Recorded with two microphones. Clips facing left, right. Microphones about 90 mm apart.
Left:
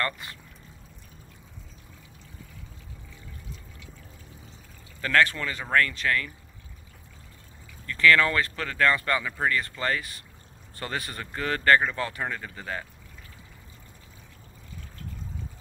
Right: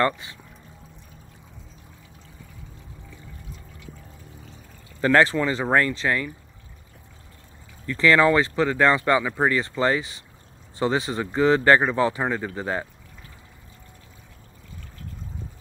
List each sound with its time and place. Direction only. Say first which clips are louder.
5.0 s speech: right 5 dB; 25° right (ahead or behind)
7.8 s speech: right 3 dB; 20° right (ahead or behind)